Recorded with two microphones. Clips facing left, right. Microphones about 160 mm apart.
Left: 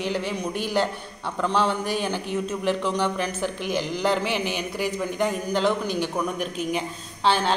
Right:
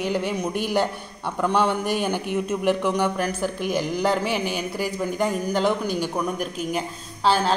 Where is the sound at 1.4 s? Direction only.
10° right (ahead or behind).